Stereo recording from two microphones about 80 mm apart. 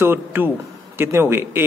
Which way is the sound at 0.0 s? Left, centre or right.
Right.